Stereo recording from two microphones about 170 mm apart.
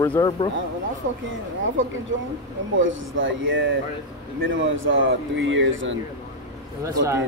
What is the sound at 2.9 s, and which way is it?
Speech, 90° right.